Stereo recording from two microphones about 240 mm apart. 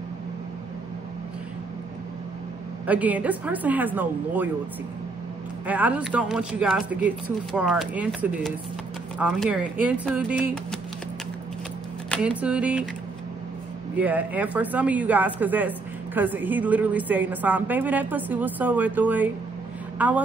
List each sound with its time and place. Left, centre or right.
2.9 s a woman's voice: centre
5.7 s speech: centre
12.1 s speech: centre
13.9 s a woman's voice: centre